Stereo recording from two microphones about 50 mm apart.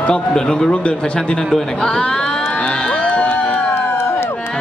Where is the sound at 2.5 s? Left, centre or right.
Left.